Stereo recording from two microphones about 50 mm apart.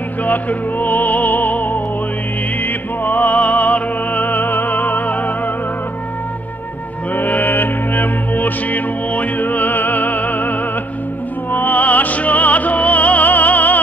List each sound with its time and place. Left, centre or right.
0.2 s music: left
7.2 s music: left
11.5 s music: left